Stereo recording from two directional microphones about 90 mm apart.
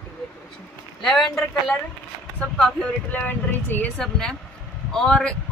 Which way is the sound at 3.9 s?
5° left (ahead or behind).